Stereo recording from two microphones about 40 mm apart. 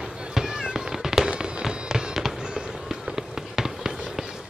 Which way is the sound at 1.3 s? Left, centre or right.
Right.